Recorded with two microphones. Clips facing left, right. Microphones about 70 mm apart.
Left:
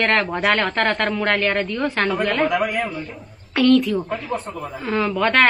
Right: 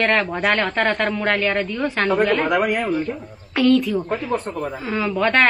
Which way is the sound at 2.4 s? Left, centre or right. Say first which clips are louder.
Right 2 dB; right.